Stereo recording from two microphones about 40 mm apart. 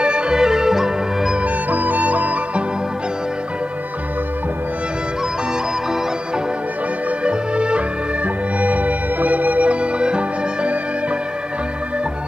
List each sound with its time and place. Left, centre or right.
0.0 s music: right
1.4 s music: right
7.1 s music: right
8.5 s music: right